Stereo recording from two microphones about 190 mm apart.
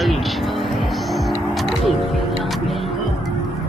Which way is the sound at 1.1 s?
Centre (ahead or behind).